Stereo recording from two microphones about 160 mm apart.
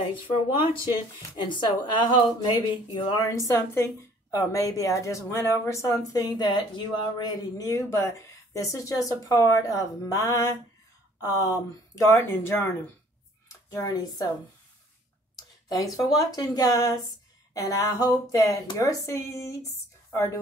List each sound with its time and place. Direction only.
0.0 s speech: 35° left (ahead or behind)
16.2 s speech: 25° left (ahead or behind)